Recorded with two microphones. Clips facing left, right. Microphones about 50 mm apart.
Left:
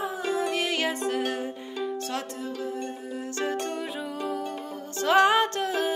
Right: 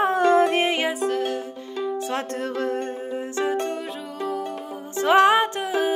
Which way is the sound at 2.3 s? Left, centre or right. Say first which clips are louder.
Right 7 dB; right.